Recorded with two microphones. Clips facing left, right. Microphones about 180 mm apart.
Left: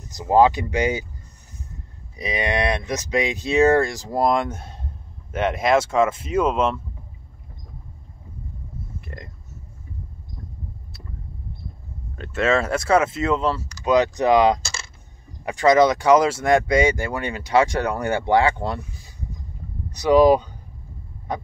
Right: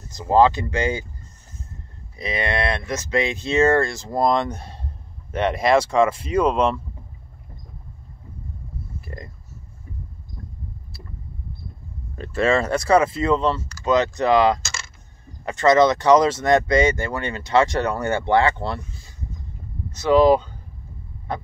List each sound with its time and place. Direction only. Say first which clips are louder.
0.0 s speech: even; 15° left (ahead or behind)
2.1 s speech: left 1 dB; 15° left (ahead or behind)
9.0 s a sound: right 2 dB; 5° right (ahead or behind)
12.2 s speech: right 1 dB; centre (ahead or behind); by 14.6 s 15° left (ahead or behind)
14.6 s coin: even; 30° left (ahead or behind)
15.4 s speech: even; 10° left (ahead or behind)